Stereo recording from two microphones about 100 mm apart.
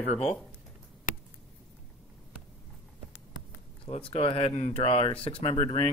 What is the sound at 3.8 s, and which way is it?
Speech, 70° left (ahead or behind).